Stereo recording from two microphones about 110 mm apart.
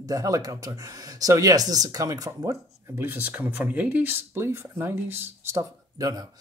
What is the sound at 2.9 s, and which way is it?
Speech, 20° right (ahead or behind).